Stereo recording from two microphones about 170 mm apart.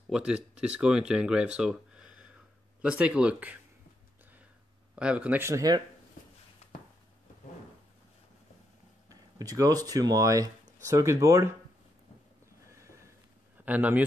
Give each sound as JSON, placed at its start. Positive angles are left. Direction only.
{"t": 0.1, "sound": "speech", "side_deg": -5}
{"t": 4.9, "sound": "speech", "side_deg": -5}
{"t": 6.6, "sound": "a sound", "side_deg": 40}
{"t": 9.1, "sound": "speech", "side_deg": -20}
{"t": 12.7, "sound": "a sound", "side_deg": -15}
{"t": 13.7, "sound": "speech", "side_deg": -10}